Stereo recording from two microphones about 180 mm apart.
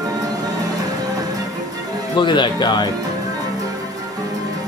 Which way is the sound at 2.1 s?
25° left (ahead or behind).